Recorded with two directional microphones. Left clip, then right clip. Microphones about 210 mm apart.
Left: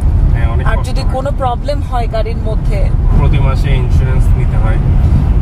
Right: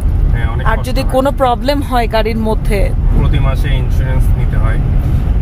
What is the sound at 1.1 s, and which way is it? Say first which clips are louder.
Speech: right 5 dB; 45° right (ahead or behind).